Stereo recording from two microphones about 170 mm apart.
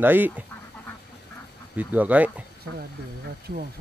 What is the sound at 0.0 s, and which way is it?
Speech, 10° right (ahead or behind).